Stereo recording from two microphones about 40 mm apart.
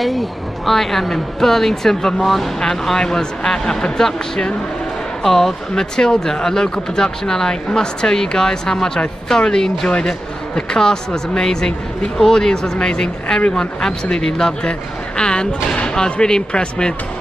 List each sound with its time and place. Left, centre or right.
0.7 s speech: centre
5.2 s speech: centre
5.9 s speech: centre